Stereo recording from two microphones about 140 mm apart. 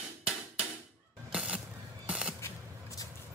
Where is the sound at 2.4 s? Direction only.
20° left (ahead or behind).